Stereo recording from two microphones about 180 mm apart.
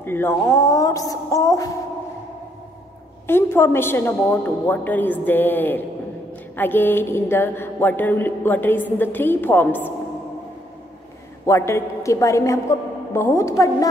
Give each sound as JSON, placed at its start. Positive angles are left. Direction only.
{"t": 0.0, "sound": "a woman's voice", "side_deg": 10}
{"t": 3.3, "sound": "a woman's voice", "side_deg": 15}
{"t": 11.4, "sound": "a woman's voice", "side_deg": 15}